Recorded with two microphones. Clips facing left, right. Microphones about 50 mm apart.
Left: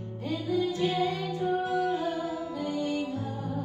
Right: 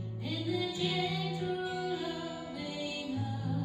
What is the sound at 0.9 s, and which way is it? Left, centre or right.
Music, left.